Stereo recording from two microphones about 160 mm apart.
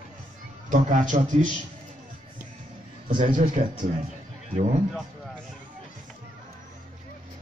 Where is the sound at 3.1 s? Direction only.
55° right (ahead or behind).